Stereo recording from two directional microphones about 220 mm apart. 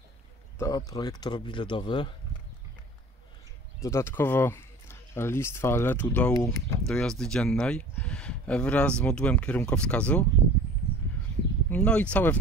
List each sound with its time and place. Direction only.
0.6 s speech: 15° left (ahead or behind)
3.8 s speech: 10° left (ahead or behind)
11.7 s speech: 5° left (ahead or behind)